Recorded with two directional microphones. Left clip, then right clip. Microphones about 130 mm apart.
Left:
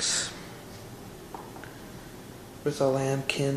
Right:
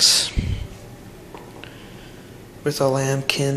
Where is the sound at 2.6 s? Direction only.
15° right (ahead or behind).